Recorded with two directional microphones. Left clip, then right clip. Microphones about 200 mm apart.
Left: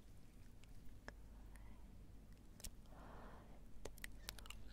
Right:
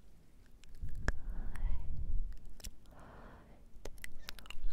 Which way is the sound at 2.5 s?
15° right (ahead or behind).